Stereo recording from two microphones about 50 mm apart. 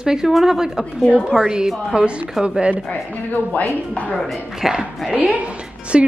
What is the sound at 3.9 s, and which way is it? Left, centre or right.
Speech, left.